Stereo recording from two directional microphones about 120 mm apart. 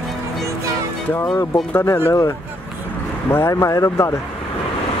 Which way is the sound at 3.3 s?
25° left (ahead or behind).